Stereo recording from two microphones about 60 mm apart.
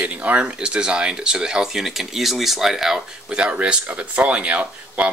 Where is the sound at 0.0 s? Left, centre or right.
Right; by 3.3 s centre.